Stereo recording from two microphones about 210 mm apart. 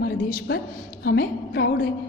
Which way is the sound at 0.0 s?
50° left (ahead or behind).